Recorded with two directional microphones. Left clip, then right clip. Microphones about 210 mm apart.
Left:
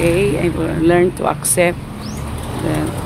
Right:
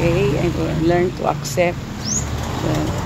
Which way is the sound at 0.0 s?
20° left (ahead or behind).